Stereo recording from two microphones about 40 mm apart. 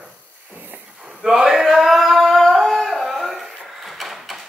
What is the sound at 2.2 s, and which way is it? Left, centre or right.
Singing, centre.